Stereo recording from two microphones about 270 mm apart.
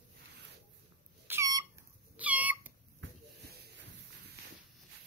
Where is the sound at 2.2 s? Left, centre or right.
Centre.